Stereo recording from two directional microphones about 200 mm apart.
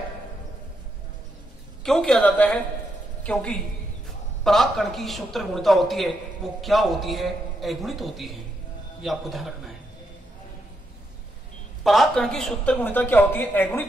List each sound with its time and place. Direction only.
1.8 s a man's voice: centre (ahead or behind)
4.5 s a man's voice: centre (ahead or behind)
11.8 s a woman's voice: centre (ahead or behind)